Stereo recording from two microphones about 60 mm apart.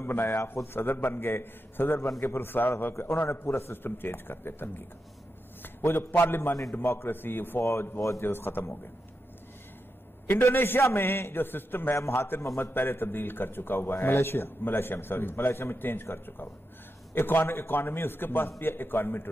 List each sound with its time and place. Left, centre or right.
0.0 s a man's voice: left
3.3 s a man's voice: left
10.2 s a man's voice: left